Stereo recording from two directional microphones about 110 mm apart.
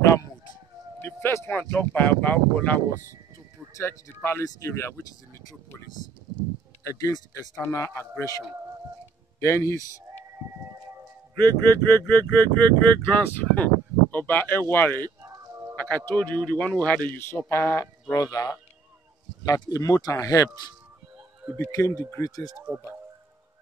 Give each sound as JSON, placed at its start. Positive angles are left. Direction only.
{"t": 1.0, "sound": "a sound", "side_deg": 20}
{"t": 2.0, "sound": "speech", "side_deg": 15}
{"t": 3.7, "sound": "speech", "side_deg": 20}
{"t": 6.8, "sound": "speech", "side_deg": 30}
{"t": 11.3, "sound": "speech", "side_deg": 20}
{"t": 15.2, "sound": "a sound", "side_deg": -30}
{"t": 15.7, "sound": "music", "side_deg": 15}
{"t": 16.1, "sound": "speech", "side_deg": 15}
{"t": 18.1, "sound": "speech", "side_deg": 35}
{"t": 21.5, "sound": "speech", "side_deg": 25}